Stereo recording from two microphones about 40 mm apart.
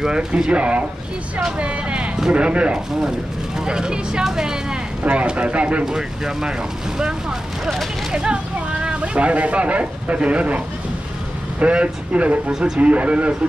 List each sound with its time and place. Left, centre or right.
0.0 s speech: centre
0.5 s speech: right
5.0 s speech: right
5.9 s speech: centre
7.6 s speech: centre
8.1 s speech: right
11.6 s speech: right
12.5 s speech: centre
12.8 s speech: right